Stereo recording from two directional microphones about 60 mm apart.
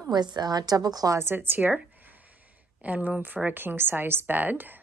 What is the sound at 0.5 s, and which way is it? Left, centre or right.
Speech, right.